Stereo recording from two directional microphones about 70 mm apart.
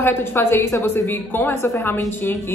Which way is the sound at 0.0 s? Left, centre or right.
Left.